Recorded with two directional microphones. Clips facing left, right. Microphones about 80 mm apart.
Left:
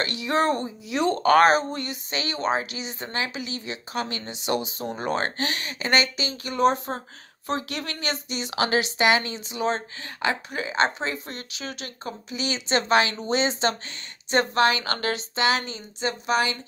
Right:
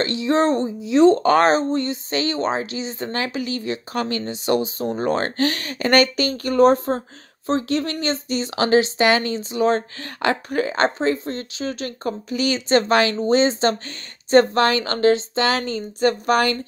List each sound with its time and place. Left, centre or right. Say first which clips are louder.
0.0 s speech: right 5 dB; right
3.2 s speech: right 4 dB; right
15.6 s speech: right 10 dB; right